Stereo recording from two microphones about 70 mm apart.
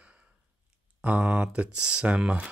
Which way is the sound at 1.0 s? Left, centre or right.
Centre.